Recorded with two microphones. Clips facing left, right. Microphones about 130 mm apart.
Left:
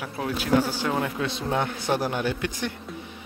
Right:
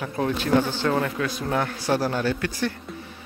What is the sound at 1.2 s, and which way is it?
Speech, 25° left (ahead or behind).